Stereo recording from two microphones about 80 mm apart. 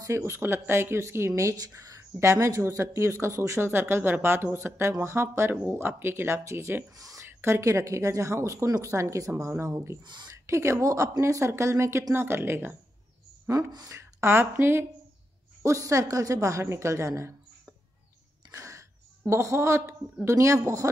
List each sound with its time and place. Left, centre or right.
0.0 s speech: right
7.2 s speech: right
13.5 s speech: right
13.9 s a woman's voice: right
15.6 s speech: right
18.5 s a sound: right
19.2 s speech: right